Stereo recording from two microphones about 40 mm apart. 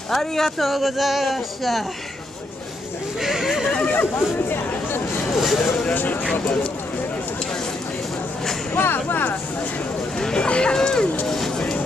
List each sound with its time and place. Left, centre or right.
0.1 s speech: centre
3.2 s speech: centre
3.9 s speech: left
5.3 s speech: centre
8.7 s speech: left
10.3 s speech: left
11.2 s speech: centre
11.5 s vehicle: centre